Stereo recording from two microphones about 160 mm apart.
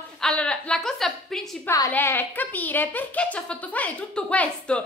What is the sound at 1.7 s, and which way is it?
A woman's voice, 15° left (ahead or behind).